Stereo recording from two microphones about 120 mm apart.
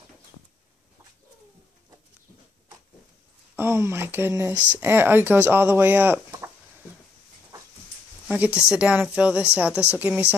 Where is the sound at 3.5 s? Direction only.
20° right (ahead or behind).